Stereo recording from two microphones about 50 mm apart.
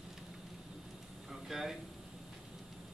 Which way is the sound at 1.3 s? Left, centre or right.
Centre.